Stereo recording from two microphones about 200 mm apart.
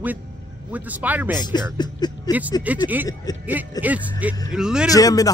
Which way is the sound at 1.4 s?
20° left (ahead or behind).